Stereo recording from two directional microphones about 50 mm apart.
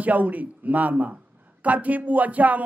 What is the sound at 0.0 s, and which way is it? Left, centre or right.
A man's voice, right.